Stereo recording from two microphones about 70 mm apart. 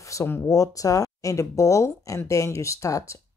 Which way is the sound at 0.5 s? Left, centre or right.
Left.